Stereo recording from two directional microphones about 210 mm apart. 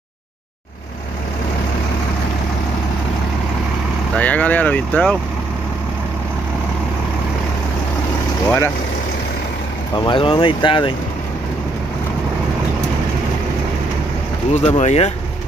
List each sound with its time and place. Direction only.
4.1 s speech: 5° left (ahead or behind)
9.9 s speech: 25° left (ahead or behind)
14.5 s speech: 30° left (ahead or behind)